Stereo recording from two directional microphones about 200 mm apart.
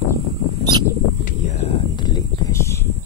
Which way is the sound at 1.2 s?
35° left (ahead or behind).